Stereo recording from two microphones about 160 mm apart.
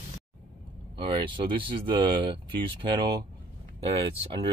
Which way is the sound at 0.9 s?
30° right (ahead or behind).